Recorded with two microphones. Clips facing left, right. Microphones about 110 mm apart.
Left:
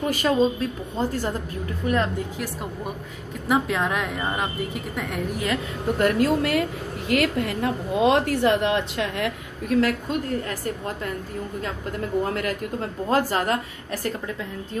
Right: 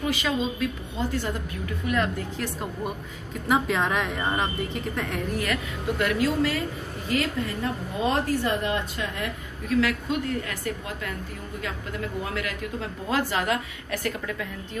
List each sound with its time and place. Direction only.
0.0 s a woman's voice: 45° left (ahead or behind)
2.3 s a woman's voice: 5° left (ahead or behind)
5.9 s a woman's voice: 45° left (ahead or behind); by 9.3 s 75° left (ahead or behind)
9.7 s a woman's voice: 45° left (ahead or behind)
13.1 s a woman's voice: 40° left (ahead or behind)